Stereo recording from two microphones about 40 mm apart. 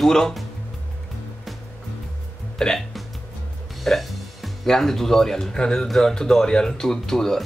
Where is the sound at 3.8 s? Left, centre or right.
Centre.